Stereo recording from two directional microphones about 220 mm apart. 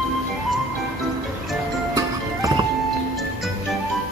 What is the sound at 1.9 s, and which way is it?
Music, 15° right (ahead or behind).